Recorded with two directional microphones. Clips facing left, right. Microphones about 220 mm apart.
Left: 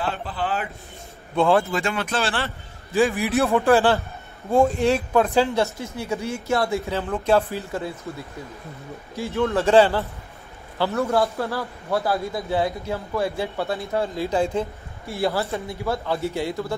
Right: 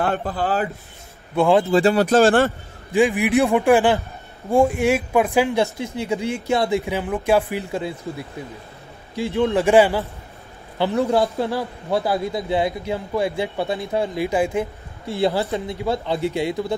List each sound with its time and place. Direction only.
0.0 s speech: 50° right (ahead or behind)
1.3 s a man's voice: 15° right (ahead or behind)
1.7 s a man's voice: 35° right (ahead or behind)
2.9 s a man's voice: 15° right (ahead or behind)